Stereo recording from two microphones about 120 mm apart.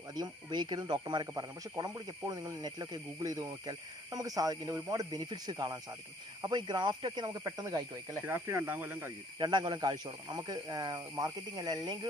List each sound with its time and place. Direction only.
0.1 s speech: 35° right (ahead or behind)
8.3 s speech: 20° right (ahead or behind)
9.4 s speech: 40° right (ahead or behind)